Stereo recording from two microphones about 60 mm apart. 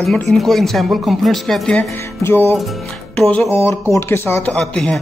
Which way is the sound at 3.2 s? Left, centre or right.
Left.